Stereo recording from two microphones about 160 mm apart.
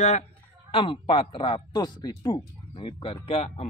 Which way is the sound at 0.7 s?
35° left (ahead or behind).